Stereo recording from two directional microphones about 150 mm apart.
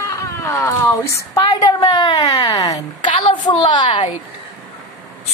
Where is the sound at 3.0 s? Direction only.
35° left (ahead or behind).